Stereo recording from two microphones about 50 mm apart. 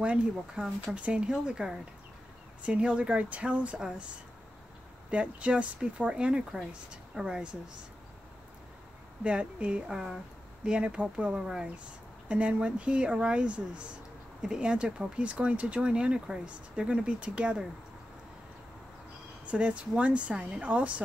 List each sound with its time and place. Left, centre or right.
0.0 s speech: right
5.1 s speech: right
9.2 s speech: right
9.8 s speech: centre
19.4 s speech: right